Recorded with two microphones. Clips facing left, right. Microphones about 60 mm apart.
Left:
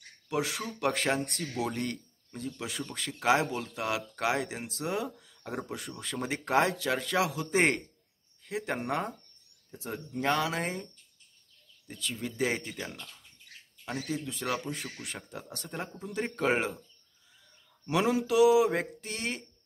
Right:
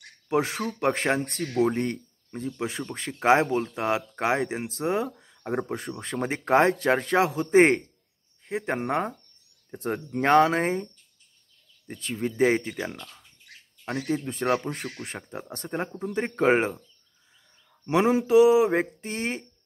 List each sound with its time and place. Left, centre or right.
0.3 s speech: right
1.4 s speech: right
1.7 s speech: right
9.7 s speech: right
11.9 s speech: right
13.8 s speech: right
17.8 s speech: right